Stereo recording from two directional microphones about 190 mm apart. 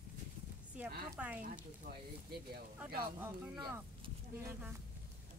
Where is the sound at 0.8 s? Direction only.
5° right (ahead or behind).